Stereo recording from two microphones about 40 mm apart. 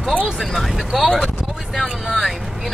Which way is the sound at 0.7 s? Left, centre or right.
Centre.